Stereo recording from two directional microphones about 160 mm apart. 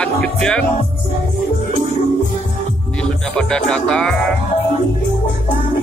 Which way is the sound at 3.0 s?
5° left (ahead or behind).